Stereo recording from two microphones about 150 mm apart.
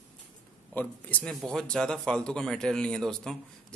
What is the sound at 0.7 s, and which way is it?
Speech, 10° left (ahead or behind).